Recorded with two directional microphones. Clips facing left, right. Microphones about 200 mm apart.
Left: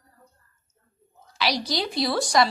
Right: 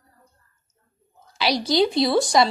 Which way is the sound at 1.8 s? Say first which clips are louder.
Right 10 dB; 25° right (ahead or behind).